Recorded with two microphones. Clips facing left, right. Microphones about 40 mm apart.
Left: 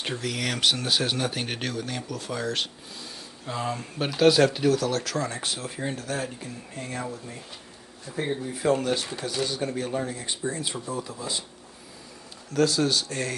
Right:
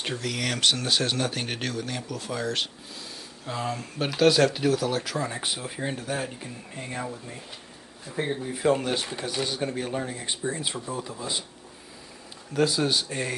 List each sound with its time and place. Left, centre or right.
0.0 s speech: centre
8.5 s a man's voice: right
12.5 s speech: centre